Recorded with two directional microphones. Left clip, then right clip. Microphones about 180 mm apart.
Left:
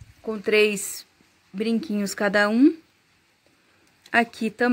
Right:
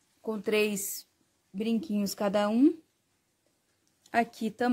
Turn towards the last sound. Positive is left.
turn(degrees=-5)  # may be behind; listen again after turning